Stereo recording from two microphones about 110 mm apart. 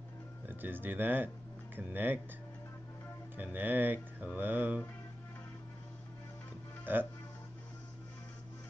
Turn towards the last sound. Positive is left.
turn(degrees=-20)  # may be behind; listen again after turning